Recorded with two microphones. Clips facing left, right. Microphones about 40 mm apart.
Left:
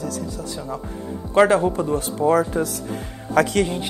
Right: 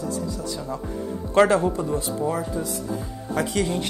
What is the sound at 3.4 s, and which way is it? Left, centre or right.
Speech, left.